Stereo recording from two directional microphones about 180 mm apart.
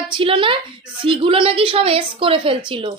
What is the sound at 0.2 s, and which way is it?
A woman's voice, 30° right (ahead or behind).